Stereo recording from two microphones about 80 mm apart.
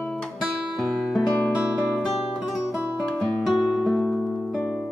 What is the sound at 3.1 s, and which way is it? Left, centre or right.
Guitar, centre.